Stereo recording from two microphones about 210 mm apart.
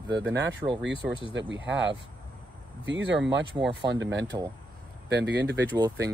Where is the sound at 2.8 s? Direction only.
55° right (ahead or behind).